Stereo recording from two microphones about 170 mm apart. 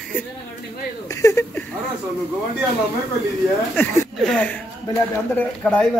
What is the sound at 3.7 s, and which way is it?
Speech, 10° left (ahead or behind).